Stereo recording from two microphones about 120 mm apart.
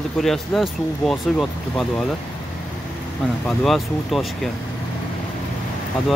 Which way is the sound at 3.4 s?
Centre (ahead or behind).